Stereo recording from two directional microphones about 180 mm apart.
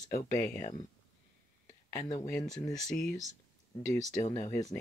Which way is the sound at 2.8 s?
45° left (ahead or behind).